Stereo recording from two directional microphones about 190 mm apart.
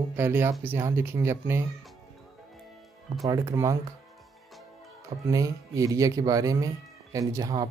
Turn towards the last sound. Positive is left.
turn(degrees=-20)  # may be behind; listen again after turning